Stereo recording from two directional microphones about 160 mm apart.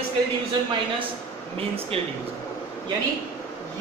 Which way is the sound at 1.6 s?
35° right (ahead or behind).